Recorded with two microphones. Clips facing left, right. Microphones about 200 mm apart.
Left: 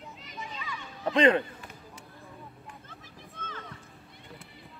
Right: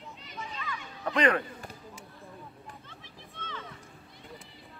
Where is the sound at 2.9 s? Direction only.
45° left (ahead or behind).